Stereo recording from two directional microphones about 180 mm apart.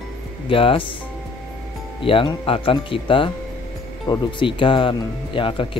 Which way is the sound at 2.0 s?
30° left (ahead or behind).